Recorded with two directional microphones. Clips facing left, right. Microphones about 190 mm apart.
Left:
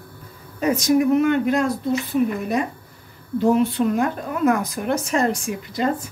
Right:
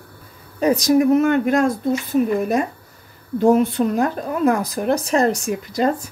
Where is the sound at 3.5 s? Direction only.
40° right (ahead or behind).